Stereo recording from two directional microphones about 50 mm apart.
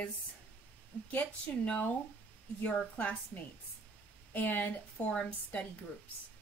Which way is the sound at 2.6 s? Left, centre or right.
Left.